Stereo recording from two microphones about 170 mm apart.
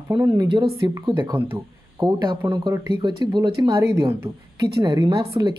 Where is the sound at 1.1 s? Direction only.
15° right (ahead or behind).